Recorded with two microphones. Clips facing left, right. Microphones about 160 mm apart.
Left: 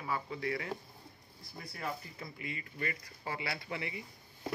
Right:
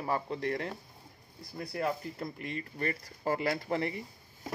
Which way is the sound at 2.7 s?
45° right (ahead or behind).